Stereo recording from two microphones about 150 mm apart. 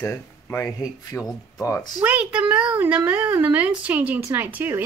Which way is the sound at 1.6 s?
20° left (ahead or behind).